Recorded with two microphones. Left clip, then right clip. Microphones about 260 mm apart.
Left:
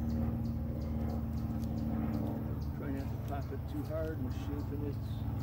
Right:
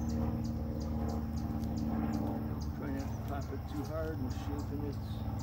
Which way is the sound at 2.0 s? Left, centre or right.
Right.